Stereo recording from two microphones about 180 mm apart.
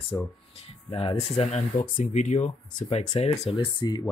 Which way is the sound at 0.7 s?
30° left (ahead or behind).